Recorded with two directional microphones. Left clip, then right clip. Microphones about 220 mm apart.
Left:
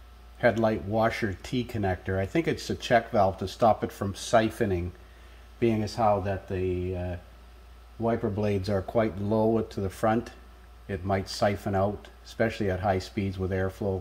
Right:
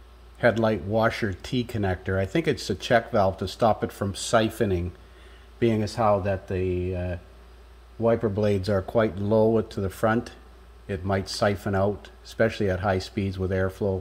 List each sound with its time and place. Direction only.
0.4 s speech: 20° right (ahead or behind)